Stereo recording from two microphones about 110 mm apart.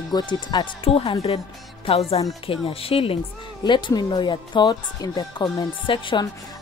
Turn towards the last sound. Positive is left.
turn(degrees=45)  # may be behind; listen again after turning